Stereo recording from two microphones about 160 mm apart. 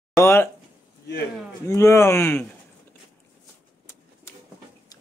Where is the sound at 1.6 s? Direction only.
20° left (ahead or behind).